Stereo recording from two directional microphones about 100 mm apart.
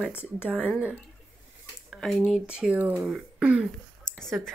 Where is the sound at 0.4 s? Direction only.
10° right (ahead or behind).